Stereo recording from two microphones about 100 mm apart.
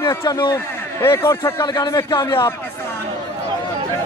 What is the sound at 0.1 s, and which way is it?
A man's voice, 25° left (ahead or behind).